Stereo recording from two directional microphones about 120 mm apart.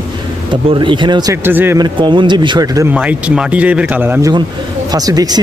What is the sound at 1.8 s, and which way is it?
Speech, 40° right (ahead or behind).